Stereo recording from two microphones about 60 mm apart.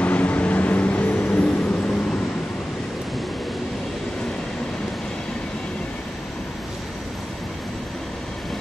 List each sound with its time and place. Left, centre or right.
0.0 s vehicle: left